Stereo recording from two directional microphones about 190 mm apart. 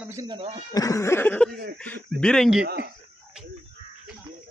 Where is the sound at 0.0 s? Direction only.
15° right (ahead or behind).